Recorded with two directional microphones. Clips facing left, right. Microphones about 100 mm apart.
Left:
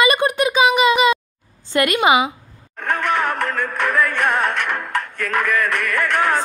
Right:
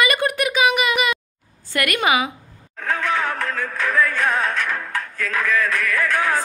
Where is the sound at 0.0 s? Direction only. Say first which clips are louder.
Left 3 dB; 20° left (ahead or behind).